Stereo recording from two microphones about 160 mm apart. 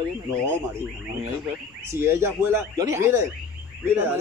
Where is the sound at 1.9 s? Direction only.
15° right (ahead or behind).